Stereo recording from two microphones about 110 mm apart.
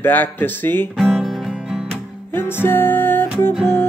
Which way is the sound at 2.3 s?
20° left (ahead or behind).